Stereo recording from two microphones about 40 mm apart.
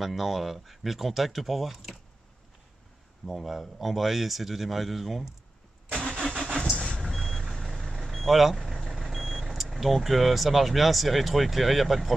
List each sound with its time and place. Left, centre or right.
0.0 s speech: centre
3.3 s speech: centre
5.9 s vehicle: centre
6.6 s vehicle: left
7.0 s reversing beeps: centre
8.0 s speech: centre